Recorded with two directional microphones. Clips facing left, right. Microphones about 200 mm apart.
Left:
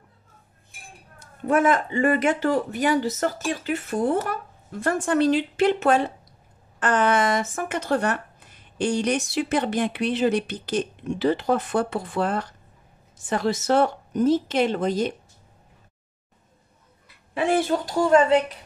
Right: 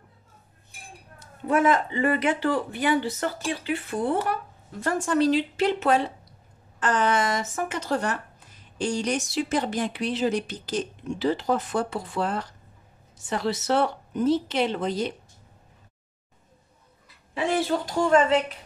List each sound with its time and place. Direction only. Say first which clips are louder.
1.5 s speech: left 1 dB; 50° left (ahead or behind)
4.8 s speech: left 2 dB; 55° left (ahead or behind)
17.3 s a woman's voice: left 3 dB; 50° left (ahead or behind)